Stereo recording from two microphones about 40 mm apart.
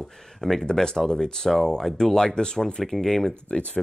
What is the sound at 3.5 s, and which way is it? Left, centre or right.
Speech, left.